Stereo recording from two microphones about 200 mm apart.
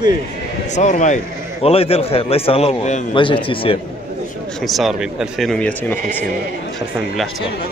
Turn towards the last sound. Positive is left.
turn(degrees=10)  # may be behind; listen again after turning